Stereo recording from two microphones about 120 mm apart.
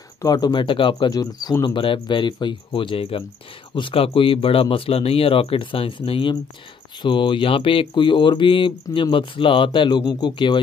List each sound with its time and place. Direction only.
0.2 s speech: 35° left (ahead or behind)